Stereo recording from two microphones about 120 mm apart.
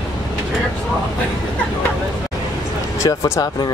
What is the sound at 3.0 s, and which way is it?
Speech, 25° left (ahead or behind).